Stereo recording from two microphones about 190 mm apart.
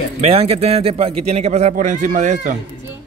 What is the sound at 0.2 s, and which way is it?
A man's voice, 30° right (ahead or behind).